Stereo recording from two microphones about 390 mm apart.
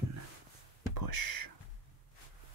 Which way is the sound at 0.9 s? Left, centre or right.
Right.